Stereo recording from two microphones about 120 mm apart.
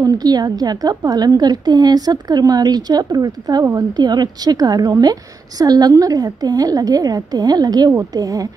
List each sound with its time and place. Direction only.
0.0 s a woman's voice: 35° right (ahead or behind)